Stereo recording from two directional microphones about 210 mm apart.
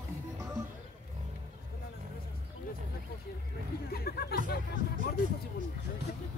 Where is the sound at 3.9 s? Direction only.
45° left (ahead or behind).